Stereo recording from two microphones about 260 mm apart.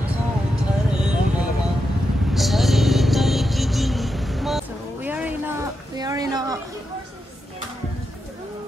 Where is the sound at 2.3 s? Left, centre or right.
Centre.